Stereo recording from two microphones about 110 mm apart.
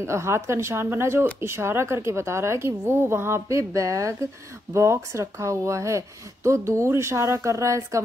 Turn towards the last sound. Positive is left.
turn(degrees=-30)  # may be behind; listen again after turning